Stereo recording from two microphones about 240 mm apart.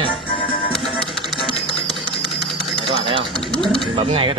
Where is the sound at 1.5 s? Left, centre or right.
Left.